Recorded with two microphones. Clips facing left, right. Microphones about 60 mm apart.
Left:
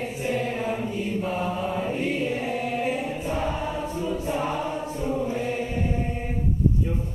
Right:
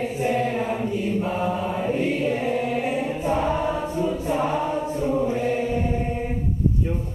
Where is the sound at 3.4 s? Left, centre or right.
Centre.